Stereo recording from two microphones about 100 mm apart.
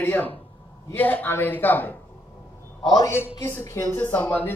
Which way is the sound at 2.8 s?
40° left (ahead or behind).